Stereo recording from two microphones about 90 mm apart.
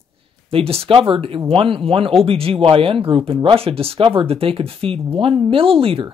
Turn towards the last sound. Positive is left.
turn(degrees=-90)